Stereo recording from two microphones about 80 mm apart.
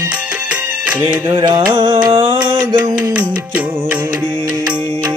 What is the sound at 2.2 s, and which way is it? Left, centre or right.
Music, right.